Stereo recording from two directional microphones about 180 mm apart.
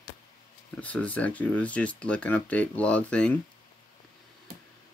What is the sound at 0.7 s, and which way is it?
Speech, 10° left (ahead or behind).